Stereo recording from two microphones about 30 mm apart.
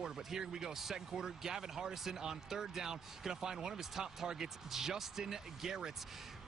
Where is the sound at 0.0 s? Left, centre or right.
Centre.